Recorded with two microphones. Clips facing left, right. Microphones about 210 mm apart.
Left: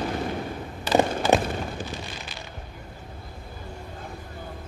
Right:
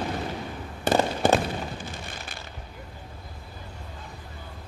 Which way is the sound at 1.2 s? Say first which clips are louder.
Right 2 dB; 55° right (ahead or behind).